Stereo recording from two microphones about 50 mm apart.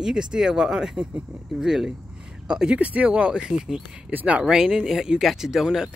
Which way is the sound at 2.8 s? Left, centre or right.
Right.